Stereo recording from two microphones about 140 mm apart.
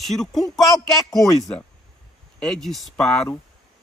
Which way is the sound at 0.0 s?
Centre (ahead or behind).